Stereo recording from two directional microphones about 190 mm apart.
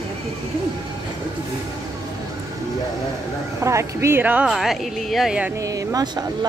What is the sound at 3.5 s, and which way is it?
Speech, 15° right (ahead or behind).